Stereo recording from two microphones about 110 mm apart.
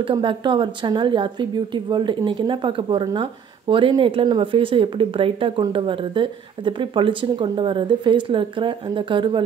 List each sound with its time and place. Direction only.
0.0 s a woman's voice: 50° right (ahead or behind)